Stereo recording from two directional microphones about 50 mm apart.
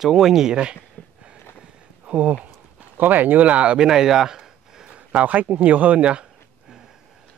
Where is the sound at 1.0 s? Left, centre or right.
Left.